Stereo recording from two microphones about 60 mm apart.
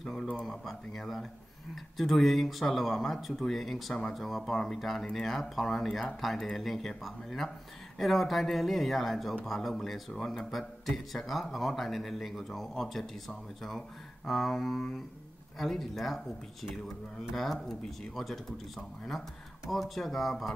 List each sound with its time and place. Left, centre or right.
0.0 s a man's voice: centre
17.4 s a man's voice: centre
19.7 s a man's voice: centre